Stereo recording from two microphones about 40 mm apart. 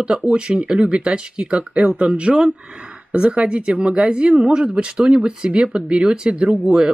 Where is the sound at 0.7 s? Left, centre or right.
Right.